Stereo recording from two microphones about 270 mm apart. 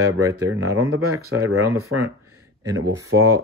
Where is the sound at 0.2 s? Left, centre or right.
Centre.